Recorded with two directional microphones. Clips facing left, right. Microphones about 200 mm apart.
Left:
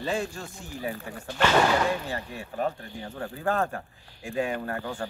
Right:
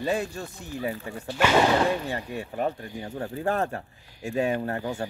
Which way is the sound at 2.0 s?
20° right (ahead or behind).